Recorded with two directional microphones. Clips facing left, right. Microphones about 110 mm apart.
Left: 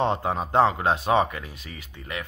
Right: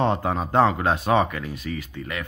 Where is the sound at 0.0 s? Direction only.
20° left (ahead or behind).